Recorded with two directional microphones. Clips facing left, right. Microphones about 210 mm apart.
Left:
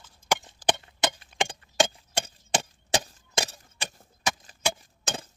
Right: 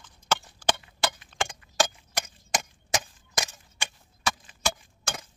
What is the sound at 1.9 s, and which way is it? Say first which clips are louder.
Wood: left 3 dB; 30° left (ahead or behind).